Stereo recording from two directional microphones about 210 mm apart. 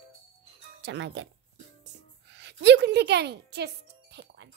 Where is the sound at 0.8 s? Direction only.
55° right (ahead or behind).